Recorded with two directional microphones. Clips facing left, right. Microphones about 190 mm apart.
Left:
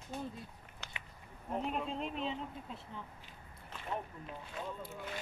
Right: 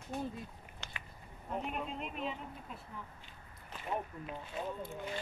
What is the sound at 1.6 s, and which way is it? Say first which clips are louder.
Speech: left 3 dB; 30° left (ahead or behind).